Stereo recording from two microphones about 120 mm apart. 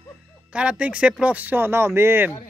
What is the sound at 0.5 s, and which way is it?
Speech, 10° right (ahead or behind).